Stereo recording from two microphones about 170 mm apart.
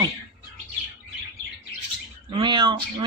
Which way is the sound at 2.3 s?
25° right (ahead or behind).